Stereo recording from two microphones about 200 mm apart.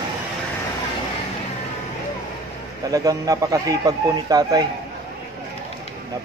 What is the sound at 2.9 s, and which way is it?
Speech, 15° right (ahead or behind).